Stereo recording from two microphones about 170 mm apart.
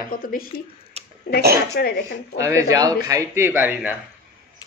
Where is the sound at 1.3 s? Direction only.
65° left (ahead or behind).